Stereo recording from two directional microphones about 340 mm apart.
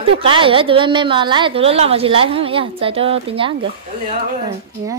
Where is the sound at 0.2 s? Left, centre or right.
Centre.